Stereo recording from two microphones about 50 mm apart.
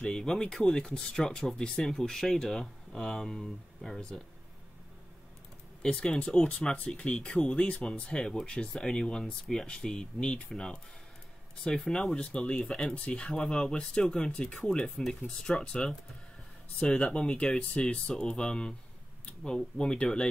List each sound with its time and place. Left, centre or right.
0.0 s speech: centre
5.8 s speech: centre